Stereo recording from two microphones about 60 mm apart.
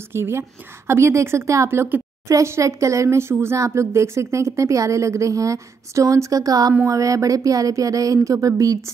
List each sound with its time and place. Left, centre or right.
0.1 s a woman's voice: right
6.9 s speech: right